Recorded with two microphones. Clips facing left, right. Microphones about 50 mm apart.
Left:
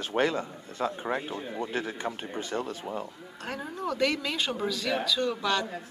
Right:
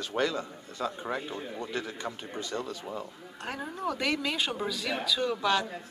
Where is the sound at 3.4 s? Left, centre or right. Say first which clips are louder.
Even; centre.